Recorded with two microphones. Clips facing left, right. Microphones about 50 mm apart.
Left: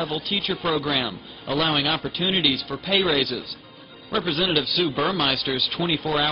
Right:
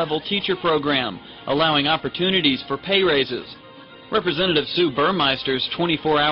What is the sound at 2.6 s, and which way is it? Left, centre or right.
A man's voice, centre.